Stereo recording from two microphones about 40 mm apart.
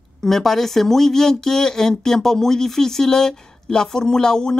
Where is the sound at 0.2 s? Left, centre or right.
Centre.